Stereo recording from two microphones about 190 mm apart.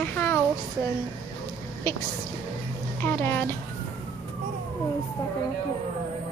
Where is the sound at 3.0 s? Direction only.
10° left (ahead or behind).